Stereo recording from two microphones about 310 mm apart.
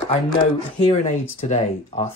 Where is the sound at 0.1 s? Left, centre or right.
Centre.